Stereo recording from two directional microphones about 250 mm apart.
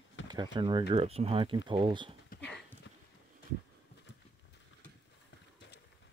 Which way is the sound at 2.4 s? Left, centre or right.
Centre.